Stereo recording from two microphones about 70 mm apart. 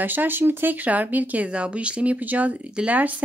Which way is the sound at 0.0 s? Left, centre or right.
Right.